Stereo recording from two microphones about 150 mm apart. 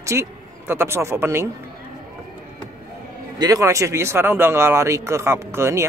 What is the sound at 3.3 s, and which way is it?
Speech, 25° right (ahead or behind).